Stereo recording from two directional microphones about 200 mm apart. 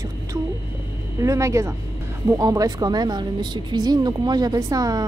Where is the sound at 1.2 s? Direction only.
15° right (ahead or behind).